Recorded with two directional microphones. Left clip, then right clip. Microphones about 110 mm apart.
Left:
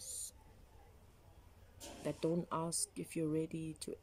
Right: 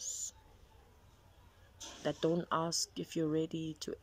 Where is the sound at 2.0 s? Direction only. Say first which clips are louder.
Right 4 dB; 25° left (ahead or behind).